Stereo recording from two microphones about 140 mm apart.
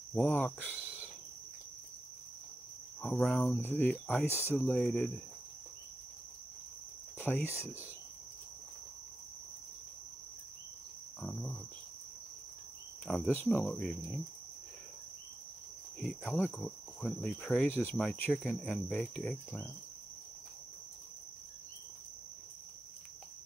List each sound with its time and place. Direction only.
0.1 s cricket: 15° left (ahead or behind)
3.0 s cricket: 5° left (ahead or behind)
7.2 s cricket: 15° left (ahead or behind)
11.1 s speech: 5° left (ahead or behind)
13.0 s speech: 5° left (ahead or behind)
13.3 s cricket: 15° left (ahead or behind)
13.6 s speech: 5° left (ahead or behind)
16.0 s cricket: centre (ahead or behind)